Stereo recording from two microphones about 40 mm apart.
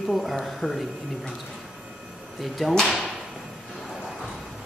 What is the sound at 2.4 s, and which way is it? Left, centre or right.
Speech, centre.